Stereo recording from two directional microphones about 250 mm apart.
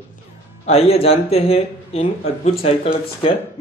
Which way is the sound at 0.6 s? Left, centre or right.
Left.